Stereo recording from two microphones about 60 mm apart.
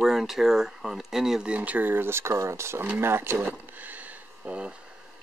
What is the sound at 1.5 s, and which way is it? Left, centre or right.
Speech, right.